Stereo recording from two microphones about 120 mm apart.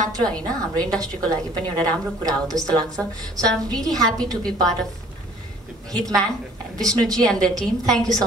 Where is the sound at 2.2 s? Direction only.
30° right (ahead or behind).